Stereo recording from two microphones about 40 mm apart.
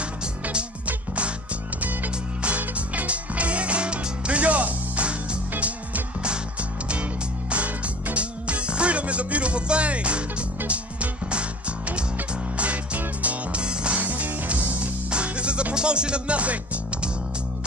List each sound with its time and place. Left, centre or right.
0.8 s music: right
2.6 s music: right
6.9 s music: right
12.5 s music: right
13.6 s music: right
14.0 s music: right
15.0 s music: right